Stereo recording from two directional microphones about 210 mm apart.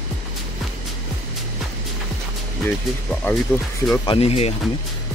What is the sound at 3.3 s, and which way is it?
Speech, 10° left (ahead or behind).